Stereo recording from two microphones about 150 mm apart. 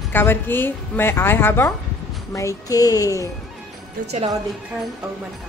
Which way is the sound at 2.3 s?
20° left (ahead or behind).